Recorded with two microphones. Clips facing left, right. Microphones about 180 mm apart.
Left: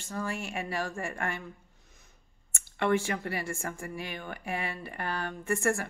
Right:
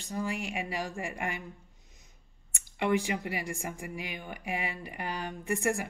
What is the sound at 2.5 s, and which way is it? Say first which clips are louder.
Speech: left 1 dB; 15° right (ahead or behind).